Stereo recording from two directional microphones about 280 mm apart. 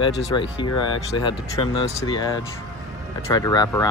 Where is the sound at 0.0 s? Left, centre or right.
Centre.